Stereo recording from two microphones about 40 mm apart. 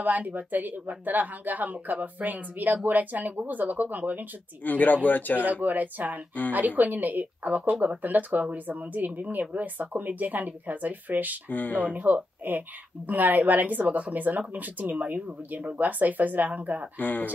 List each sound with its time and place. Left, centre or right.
0.0 s speech: right
4.6 s speech: left
5.4 s speech: right
11.4 s speech: left
11.8 s speech: right
17.0 s speech: left